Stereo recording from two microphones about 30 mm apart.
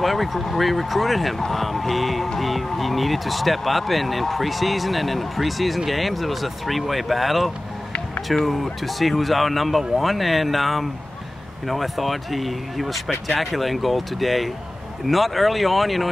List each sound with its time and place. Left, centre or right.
0.0 s speech: centre